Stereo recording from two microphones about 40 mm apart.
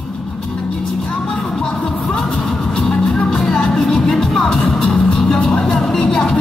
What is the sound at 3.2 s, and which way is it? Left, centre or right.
Music, centre.